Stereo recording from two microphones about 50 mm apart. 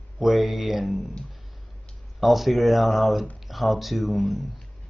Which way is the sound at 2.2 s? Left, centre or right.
Centre.